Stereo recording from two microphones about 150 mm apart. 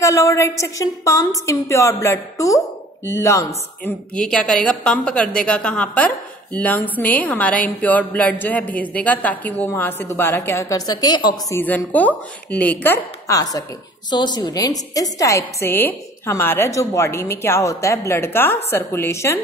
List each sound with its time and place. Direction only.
0.0 s a woman's voice: 20° left (ahead or behind)
4.1 s a woman's voice: 5° left (ahead or behind); by 11.5 s 30° left (ahead or behind)
11.5 s a woman's voice: 10° left (ahead or behind)